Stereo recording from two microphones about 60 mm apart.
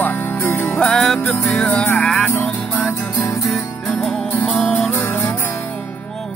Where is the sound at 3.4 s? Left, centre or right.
Centre.